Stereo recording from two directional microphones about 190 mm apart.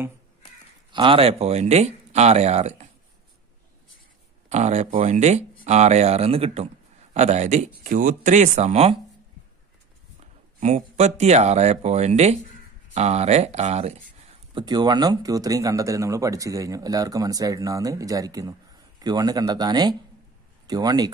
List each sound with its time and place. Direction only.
0.9 s speech: 25° right (ahead or behind)
4.5 s speech: 35° right (ahead or behind)
10.6 s speech: 35° right (ahead or behind)
14.5 s speech: 20° right (ahead or behind)